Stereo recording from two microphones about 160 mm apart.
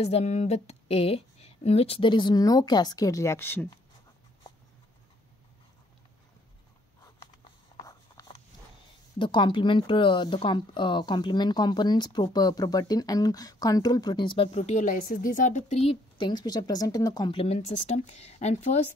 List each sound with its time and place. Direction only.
0.0 s a woman's voice: 40° left (ahead or behind); by 3.6 s 15° left (ahead or behind)
7.8 s a sound: 20° left (ahead or behind)
9.2 s speech: 30° left (ahead or behind)
14.5 s a woman's voice: 45° left (ahead or behind)